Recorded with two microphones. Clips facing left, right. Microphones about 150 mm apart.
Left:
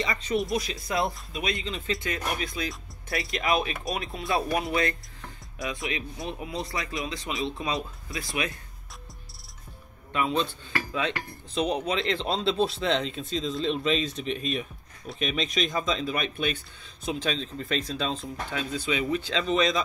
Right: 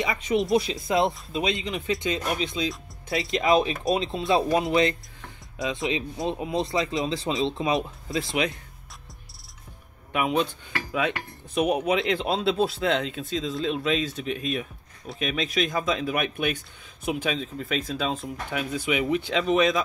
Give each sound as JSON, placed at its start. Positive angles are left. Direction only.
{"t": 0.0, "sound": "speech", "side_deg": -15}
{"t": 0.4, "sound": "speech", "side_deg": -25}
{"t": 10.1, "sound": "speech", "side_deg": -15}